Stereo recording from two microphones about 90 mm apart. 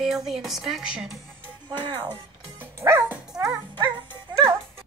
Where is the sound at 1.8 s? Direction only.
55° right (ahead or behind).